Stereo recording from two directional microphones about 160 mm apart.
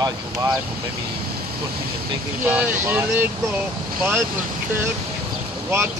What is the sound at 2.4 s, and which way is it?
Speech, 10° right (ahead or behind).